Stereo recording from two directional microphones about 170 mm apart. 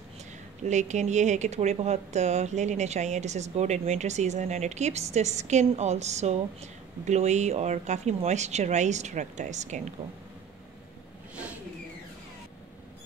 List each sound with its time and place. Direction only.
0.7 s speech: 45° right (ahead or behind)